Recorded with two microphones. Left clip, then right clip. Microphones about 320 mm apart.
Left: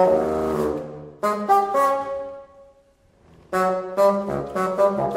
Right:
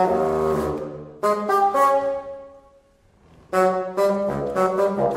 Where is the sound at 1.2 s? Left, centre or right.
Left.